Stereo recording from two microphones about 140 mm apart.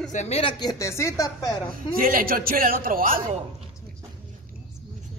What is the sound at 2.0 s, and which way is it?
A man's voice, 90° right.